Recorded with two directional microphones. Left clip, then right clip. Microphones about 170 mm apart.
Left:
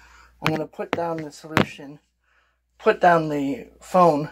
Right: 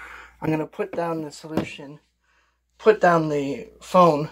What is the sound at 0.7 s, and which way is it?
Speech, 25° right (ahead or behind).